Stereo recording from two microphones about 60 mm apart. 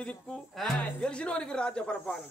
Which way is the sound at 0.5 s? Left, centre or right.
Centre.